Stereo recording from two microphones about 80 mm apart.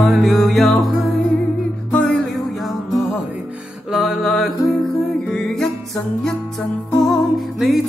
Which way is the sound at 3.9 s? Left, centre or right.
Centre.